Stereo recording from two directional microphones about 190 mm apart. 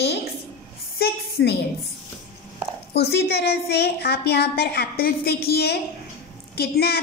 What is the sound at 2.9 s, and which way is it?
A woman's voice, 60° left (ahead or behind).